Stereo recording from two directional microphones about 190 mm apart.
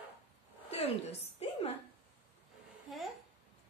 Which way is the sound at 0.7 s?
35° left (ahead or behind).